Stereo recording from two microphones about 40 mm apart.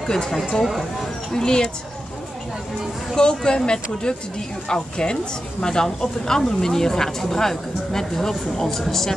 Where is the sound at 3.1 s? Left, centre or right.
Left.